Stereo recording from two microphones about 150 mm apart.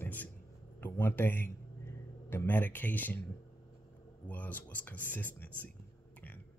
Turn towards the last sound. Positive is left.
turn(degrees=10)  # may be behind; listen again after turning